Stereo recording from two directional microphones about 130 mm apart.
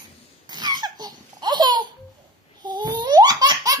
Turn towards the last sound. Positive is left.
turn(degrees=-30)  # may be behind; listen again after turning